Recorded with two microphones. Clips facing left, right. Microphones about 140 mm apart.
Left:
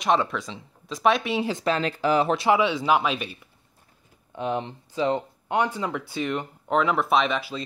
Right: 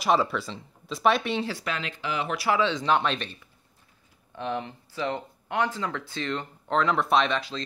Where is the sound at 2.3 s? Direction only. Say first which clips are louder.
Left 4 dB; 20° left (ahead or behind).